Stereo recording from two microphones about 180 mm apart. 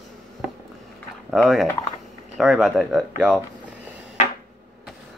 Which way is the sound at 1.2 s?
Centre (ahead or behind).